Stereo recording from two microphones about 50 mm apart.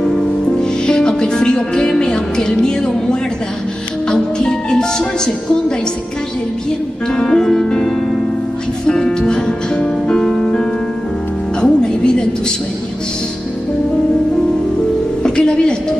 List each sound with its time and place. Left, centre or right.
0.6 s music: centre
7.1 s music: centre
15.2 s music: centre